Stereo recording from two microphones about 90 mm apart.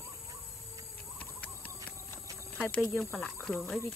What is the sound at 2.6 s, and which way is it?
Cricket, 15° left (ahead or behind).